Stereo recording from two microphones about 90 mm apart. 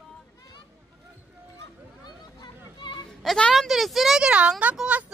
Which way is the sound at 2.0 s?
55° left (ahead or behind).